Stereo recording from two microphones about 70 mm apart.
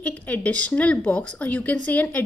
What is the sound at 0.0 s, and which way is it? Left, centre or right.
A woman's voice, centre.